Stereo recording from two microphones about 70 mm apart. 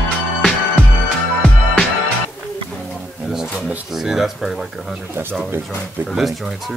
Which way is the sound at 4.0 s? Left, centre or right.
Centre.